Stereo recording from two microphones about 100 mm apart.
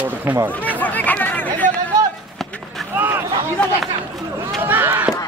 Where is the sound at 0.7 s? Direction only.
15° left (ahead or behind).